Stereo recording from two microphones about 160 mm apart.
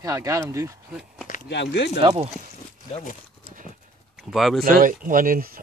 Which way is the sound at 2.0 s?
30° right (ahead or behind).